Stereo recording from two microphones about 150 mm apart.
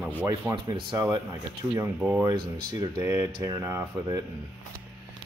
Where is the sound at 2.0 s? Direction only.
10° right (ahead or behind).